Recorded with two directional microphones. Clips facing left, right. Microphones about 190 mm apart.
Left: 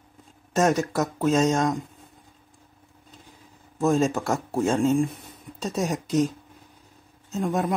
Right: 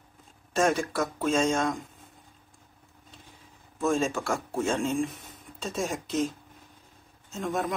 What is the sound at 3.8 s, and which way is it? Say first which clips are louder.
Speech: left 5 dB; 40° left (ahead or behind).